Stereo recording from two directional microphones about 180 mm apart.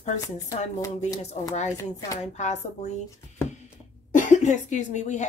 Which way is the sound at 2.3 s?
40° left (ahead or behind).